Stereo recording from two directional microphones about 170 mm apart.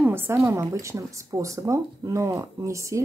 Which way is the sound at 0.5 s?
15° right (ahead or behind).